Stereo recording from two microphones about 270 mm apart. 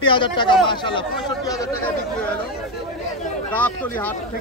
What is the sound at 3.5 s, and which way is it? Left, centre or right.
Speech, centre.